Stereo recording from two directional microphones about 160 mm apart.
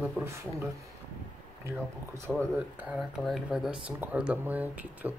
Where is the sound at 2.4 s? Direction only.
10° right (ahead or behind).